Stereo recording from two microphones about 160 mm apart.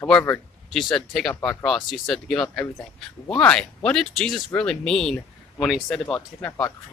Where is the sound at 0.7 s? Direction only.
Centre (ahead or behind).